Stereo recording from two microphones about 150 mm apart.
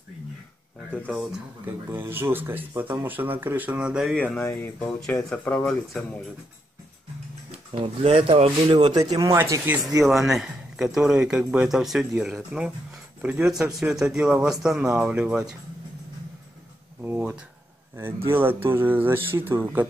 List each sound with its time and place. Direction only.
0.9 s a man's voice: 5° right (ahead or behind)
4.4 s speech: 15° left (ahead or behind)
7.7 s speech: 40° right (ahead or behind); by 9.8 s 15° right (ahead or behind)
10.0 s a man's voice: centre (ahead or behind)
17.0 s a sound: 15° right (ahead or behind)
18.3 s speech: 15° right (ahead or behind)